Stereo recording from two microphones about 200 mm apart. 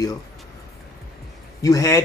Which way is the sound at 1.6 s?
15° left (ahead or behind).